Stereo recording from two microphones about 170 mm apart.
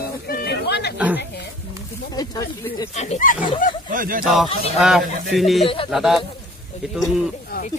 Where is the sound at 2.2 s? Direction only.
25° left (ahead or behind).